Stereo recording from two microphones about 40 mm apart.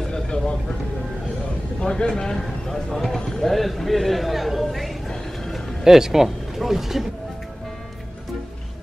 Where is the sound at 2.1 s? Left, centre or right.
Centre.